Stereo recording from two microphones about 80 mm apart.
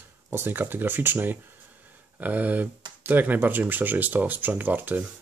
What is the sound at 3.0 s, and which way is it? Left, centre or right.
Speech, right.